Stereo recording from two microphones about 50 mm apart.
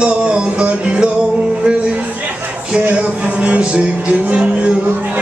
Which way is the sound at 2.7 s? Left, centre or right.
Right.